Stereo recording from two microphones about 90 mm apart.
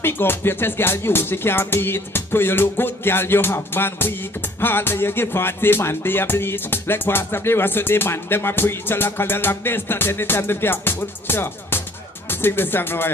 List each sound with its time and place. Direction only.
0.0 s music: 25° left (ahead or behind)